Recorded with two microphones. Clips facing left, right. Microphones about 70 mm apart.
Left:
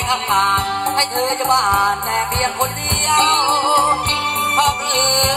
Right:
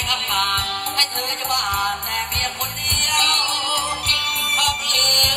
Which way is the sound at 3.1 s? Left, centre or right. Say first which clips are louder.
Left 9 dB; left.